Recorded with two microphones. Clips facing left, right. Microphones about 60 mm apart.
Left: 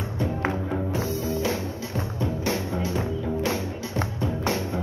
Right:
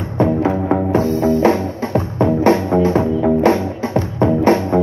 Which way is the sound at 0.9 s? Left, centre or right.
Right.